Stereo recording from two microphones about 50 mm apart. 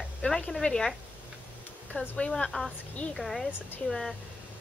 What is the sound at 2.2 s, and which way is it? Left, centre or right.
Speech, left.